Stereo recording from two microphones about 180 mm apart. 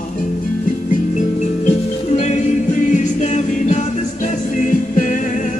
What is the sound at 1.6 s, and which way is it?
Music, 40° left (ahead or behind).